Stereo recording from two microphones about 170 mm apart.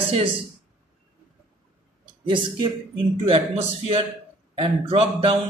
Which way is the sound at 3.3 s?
35° right (ahead or behind).